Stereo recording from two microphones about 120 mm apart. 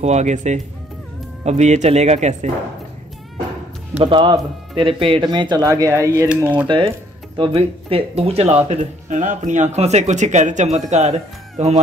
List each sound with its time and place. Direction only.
0.0 s speech: 70° right (ahead or behind)
4.0 s speech: 45° right (ahead or behind)
5.2 s speech: 35° right (ahead or behind)
6.4 s speech: 10° right (ahead or behind)
7.3 s speech: 50° right (ahead or behind)
8.6 s speech: 85° right
10.9 s speech: 70° right (ahead or behind)